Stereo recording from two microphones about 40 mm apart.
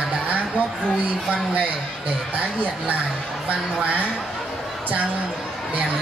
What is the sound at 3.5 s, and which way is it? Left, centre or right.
Speech, right.